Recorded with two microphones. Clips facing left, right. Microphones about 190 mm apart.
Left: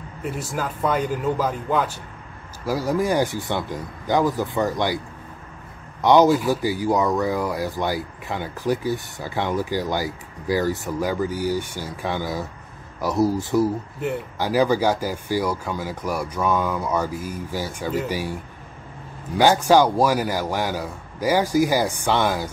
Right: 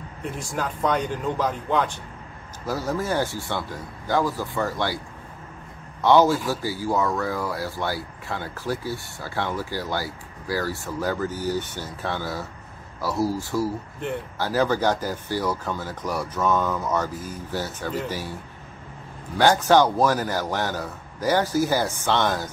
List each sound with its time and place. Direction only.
0.2 s a man's voice: 5° left (ahead or behind)
6.0 s speech: 15° left (ahead or behind)